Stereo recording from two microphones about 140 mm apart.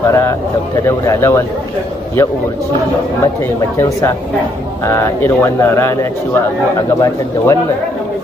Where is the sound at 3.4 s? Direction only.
20° left (ahead or behind).